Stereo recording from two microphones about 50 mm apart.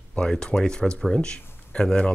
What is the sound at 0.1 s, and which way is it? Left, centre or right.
Speech, centre.